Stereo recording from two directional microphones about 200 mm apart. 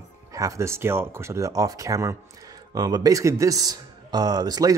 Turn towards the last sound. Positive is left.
turn(degrees=-20)  # may be behind; listen again after turning